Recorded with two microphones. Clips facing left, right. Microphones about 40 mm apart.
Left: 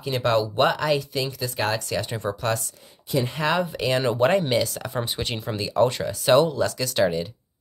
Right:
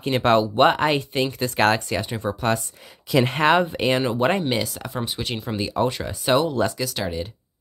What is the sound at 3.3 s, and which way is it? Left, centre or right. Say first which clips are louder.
Speech: right 6 dB; right.